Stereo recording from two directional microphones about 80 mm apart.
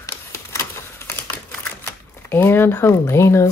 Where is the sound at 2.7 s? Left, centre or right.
Left.